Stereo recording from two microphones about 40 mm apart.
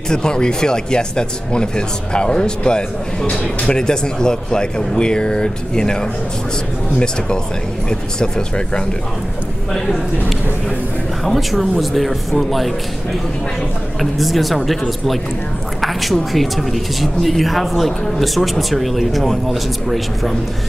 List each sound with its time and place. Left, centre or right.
0.1 s speech: centre
7.9 s speech: left
11.2 s speech: centre
14.1 s speech: centre